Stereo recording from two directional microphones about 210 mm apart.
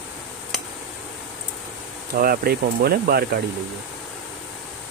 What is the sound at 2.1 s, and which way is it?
Speech, 45° right (ahead or behind).